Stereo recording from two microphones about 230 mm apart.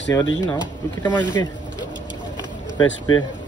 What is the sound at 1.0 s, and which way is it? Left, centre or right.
Speech, centre.